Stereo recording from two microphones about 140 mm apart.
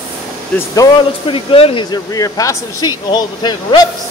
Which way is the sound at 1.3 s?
40° left (ahead or behind).